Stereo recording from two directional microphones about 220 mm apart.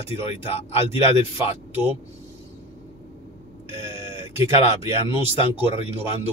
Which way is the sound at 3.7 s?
25° left (ahead or behind).